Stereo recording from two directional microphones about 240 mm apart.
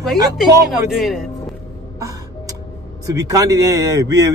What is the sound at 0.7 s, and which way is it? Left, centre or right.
Speech, centre.